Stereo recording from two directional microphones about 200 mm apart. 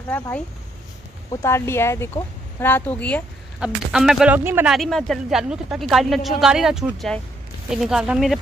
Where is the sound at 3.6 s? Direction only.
5° right (ahead or behind).